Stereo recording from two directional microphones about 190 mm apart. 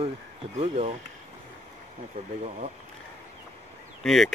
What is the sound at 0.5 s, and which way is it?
Speech, 35° right (ahead or behind).